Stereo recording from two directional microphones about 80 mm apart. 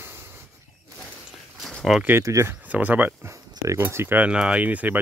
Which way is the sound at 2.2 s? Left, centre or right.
Right.